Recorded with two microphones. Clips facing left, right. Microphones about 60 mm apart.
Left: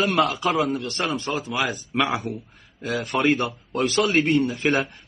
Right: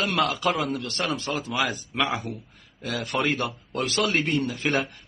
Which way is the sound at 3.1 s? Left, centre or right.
Centre.